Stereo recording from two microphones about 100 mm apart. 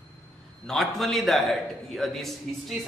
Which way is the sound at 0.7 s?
Centre (ahead or behind).